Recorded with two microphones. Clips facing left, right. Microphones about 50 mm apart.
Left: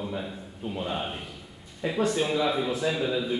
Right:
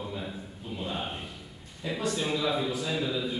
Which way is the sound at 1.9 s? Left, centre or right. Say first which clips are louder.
Left 4 dB; left.